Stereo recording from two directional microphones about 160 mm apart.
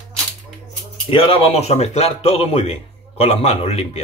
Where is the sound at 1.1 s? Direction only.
35° left (ahead or behind).